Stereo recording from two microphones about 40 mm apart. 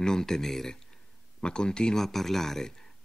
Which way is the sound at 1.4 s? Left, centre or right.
Left.